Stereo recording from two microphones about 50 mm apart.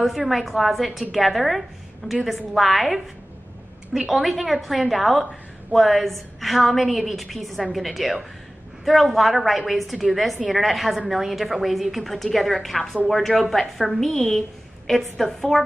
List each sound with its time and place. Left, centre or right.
0.0 s a woman's voice: centre
2.0 s a woman's voice: left
2.5 s a woman's voice: centre